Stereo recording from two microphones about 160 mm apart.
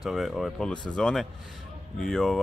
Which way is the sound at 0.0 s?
Centre (ahead or behind).